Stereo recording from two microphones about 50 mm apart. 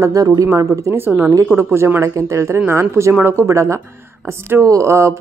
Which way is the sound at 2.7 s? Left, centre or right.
Right.